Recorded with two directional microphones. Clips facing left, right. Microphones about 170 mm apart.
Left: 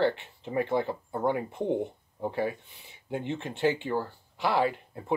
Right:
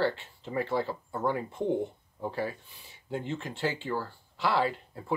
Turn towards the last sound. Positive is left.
turn(degrees=20)  # may be behind; listen again after turning